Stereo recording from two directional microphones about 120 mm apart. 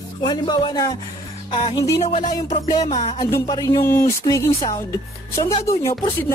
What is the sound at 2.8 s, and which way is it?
Music, 70° left (ahead or behind).